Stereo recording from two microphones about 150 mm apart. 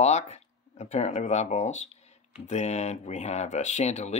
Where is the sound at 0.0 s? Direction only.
45° left (ahead or behind).